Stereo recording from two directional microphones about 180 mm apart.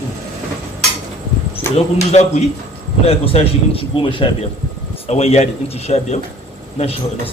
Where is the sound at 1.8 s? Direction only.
35° left (ahead or behind).